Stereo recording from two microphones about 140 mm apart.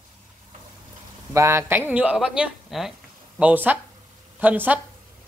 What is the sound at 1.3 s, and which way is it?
Speech, 20° right (ahead or behind).